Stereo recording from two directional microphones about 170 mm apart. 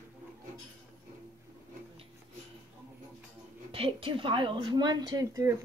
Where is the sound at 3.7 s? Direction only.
30° right (ahead or behind).